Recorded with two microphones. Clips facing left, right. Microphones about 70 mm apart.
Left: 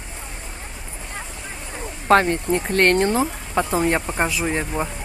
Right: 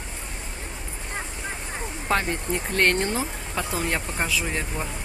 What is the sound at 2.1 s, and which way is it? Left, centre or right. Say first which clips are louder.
Speech: left 9 dB; left.